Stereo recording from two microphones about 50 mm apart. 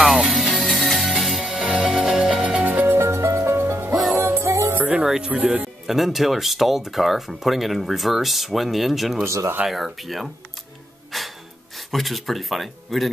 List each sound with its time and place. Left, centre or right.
0.3 s music: centre
1.4 s music: centre
2.0 s music: centre
2.6 s music: right
3.0 s music: right
3.9 s music: centre
4.2 s music: right
5.0 s speech: centre
5.3 s speech: right
5.9 s speech: centre
9.2 s speech: right
9.7 s speech: centre
11.1 s music: centre
11.9 s speech: centre